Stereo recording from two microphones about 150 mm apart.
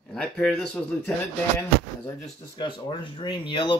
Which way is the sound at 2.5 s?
30° left (ahead or behind).